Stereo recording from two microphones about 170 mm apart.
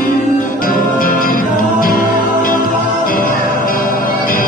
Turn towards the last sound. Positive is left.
turn(degrees=55)  # may be behind; listen again after turning